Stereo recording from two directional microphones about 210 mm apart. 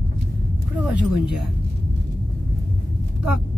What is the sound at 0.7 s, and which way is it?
Speech, 5° right (ahead or behind).